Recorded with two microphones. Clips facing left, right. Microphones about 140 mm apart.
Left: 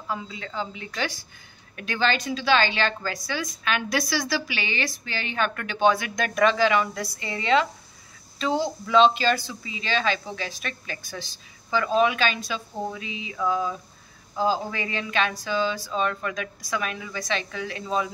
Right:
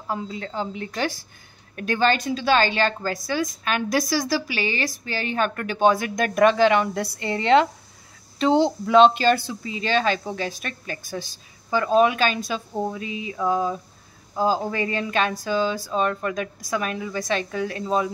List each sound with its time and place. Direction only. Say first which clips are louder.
0.1 s a woman's voice: right 3 dB; 45° right (ahead or behind)
8.8 s a woman's voice: right 2 dB; 55° right (ahead or behind)
13.4 s a sound: right 3 dB; 40° right (ahead or behind)
14.4 s a woman's voice: right 3 dB; 45° right (ahead or behind)